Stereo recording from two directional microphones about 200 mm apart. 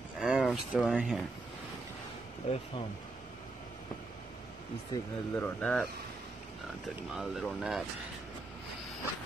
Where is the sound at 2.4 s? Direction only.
30° left (ahead or behind).